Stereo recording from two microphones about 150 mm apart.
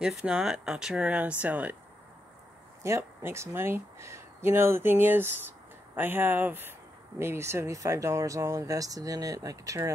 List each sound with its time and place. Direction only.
0.0 s speech: 5° right (ahead or behind)
2.8 s speech: 15° right (ahead or behind)